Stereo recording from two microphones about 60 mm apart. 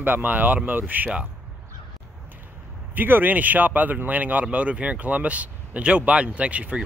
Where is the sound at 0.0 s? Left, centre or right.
Right.